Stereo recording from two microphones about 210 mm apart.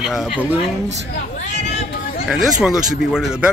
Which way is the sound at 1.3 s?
35° left (ahead or behind).